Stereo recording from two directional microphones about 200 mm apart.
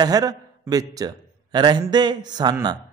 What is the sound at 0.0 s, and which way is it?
A man's voice, 20° right (ahead or behind).